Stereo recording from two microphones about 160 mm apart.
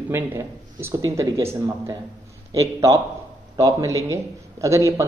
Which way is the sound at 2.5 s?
20° right (ahead or behind).